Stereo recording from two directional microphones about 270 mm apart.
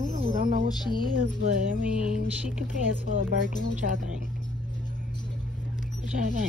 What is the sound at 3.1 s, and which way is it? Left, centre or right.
Speech, right.